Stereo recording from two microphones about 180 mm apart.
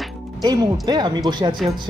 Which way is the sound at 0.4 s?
20° right (ahead or behind).